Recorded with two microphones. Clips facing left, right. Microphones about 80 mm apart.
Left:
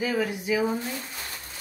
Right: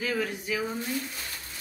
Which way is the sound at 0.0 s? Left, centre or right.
Centre.